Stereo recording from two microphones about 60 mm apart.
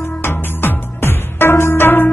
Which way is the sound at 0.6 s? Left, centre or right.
Left.